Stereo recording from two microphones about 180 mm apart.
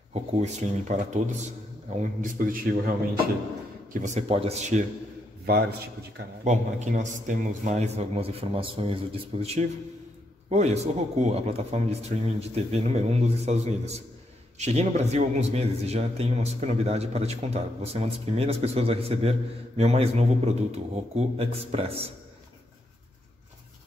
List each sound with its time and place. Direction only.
0.1 s a man's voice: 40° right (ahead or behind)
3.9 s a man's voice: 40° right (ahead or behind)
5.5 s a man's voice: 60° right (ahead or behind)
6.4 s a man's voice: 40° right (ahead or behind)